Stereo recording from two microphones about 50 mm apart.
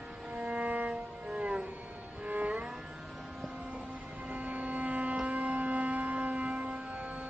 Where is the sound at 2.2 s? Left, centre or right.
Right.